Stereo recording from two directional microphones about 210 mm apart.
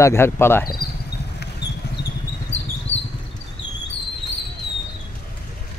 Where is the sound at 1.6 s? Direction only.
55° left (ahead or behind).